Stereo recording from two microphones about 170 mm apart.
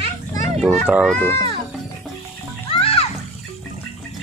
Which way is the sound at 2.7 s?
35° left (ahead or behind).